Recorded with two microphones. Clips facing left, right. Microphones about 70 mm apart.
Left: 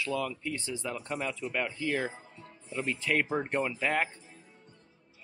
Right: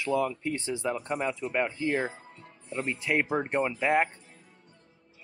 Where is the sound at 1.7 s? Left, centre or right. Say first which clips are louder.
Right 3 dB; right.